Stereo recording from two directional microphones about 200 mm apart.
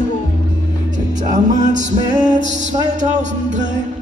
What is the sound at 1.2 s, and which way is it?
Music, 40° right (ahead or behind).